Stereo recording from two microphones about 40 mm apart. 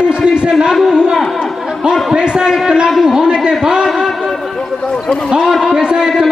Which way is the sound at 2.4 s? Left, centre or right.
Centre.